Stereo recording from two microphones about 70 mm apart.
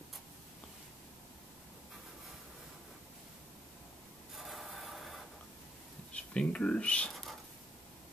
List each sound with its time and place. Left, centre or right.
4.4 s a sound: centre
6.1 s speech: centre
7.1 s whispering: centre